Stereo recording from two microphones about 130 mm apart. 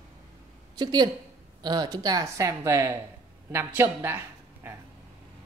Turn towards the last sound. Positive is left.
turn(degrees=-15)  # may be behind; listen again after turning